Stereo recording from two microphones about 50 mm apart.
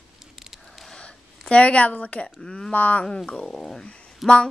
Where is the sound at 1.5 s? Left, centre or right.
Left.